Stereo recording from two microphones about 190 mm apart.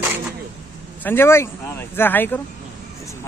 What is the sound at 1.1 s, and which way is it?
Speech, 10° left (ahead or behind).